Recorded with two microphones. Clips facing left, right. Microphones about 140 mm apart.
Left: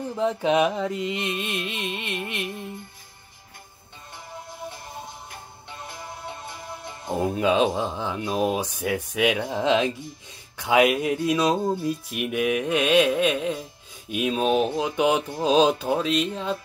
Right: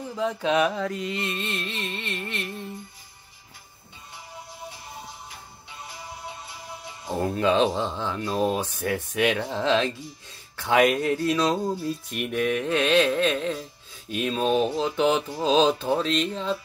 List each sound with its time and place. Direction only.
0.1 s speech: 20° left (ahead or behind)
4.6 s music: 55° left (ahead or behind)
7.1 s speech: 15° left (ahead or behind)
12.1 s speech: 5° left (ahead or behind)